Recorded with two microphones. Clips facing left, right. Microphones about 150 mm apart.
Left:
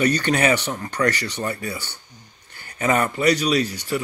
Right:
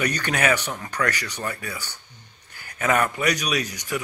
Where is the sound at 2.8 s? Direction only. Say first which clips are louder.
Left 1 dB; 10° left (ahead or behind).